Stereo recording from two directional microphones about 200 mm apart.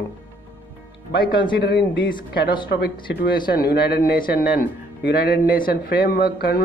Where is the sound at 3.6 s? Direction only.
50° left (ahead or behind).